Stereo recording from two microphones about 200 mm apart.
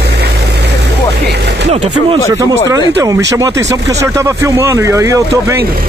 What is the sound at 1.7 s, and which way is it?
Speech, 30° right (ahead or behind).